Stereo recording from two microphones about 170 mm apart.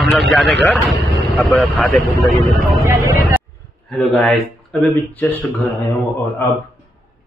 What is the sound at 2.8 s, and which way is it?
Speech, 15° right (ahead or behind).